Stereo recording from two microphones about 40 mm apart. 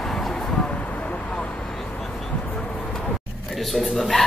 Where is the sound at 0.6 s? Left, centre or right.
Left.